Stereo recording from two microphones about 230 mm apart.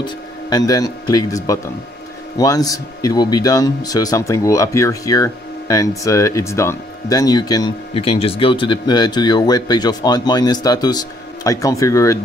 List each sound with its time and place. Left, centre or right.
0.0 s speech: centre